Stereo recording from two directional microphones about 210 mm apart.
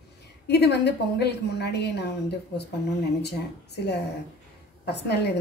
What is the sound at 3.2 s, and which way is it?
Speech, 50° left (ahead or behind).